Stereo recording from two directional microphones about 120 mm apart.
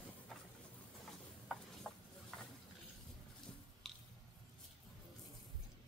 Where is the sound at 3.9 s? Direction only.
Centre (ahead or behind).